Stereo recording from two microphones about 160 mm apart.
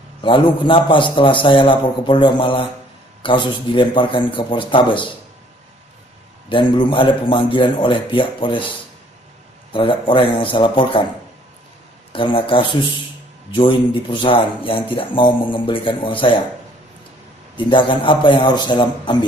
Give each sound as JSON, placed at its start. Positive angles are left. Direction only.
{"t": 0.2, "sound": "speech", "side_deg": 30}
{"t": 6.5, "sound": "speech", "side_deg": 30}
{"t": 12.1, "sound": "speech", "side_deg": 35}
{"t": 17.6, "sound": "a man's voice", "side_deg": 30}